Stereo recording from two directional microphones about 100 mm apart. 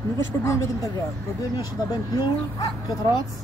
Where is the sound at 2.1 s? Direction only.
40° left (ahead or behind).